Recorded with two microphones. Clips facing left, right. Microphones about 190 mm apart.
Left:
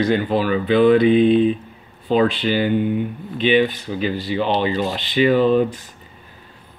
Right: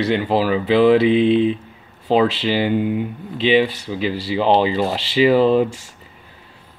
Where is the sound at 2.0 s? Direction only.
90° right.